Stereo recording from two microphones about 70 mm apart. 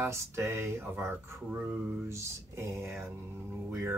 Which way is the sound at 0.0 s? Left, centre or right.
Right.